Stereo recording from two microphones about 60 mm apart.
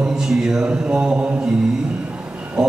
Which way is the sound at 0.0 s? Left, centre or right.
Centre.